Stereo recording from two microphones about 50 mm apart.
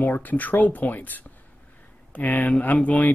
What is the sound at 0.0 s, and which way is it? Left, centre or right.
Speech, left.